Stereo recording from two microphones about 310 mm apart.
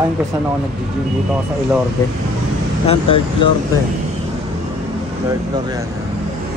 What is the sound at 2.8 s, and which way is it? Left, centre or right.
Speech, centre.